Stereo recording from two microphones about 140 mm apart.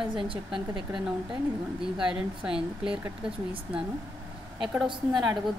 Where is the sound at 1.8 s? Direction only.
5° right (ahead or behind).